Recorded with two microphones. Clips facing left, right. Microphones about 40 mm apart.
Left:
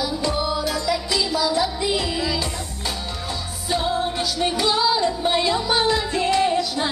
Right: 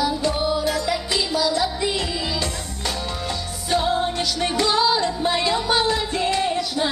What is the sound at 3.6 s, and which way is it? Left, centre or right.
Music, right.